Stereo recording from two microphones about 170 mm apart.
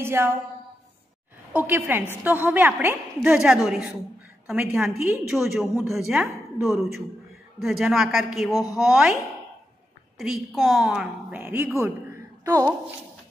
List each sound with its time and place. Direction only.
0.0 s a woman's voice: 15° right (ahead or behind)
1.5 s a woman's voice: 10° right (ahead or behind)
4.8 s a woman's voice: 15° right (ahead or behind)
5.3 s a woman's voice: centre (ahead or behind)
10.1 s a woman's voice: centre (ahead or behind)
11.8 s a sound: 15° right (ahead or behind)